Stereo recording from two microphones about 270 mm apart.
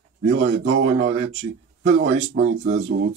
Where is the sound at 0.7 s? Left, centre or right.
Right.